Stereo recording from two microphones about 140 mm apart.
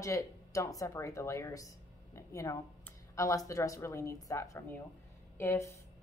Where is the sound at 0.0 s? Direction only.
25° left (ahead or behind).